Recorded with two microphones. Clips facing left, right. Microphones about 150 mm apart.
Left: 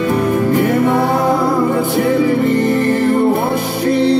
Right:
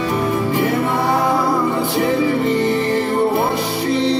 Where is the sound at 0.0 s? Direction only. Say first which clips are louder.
Left 4 dB; 45° left (ahead or behind).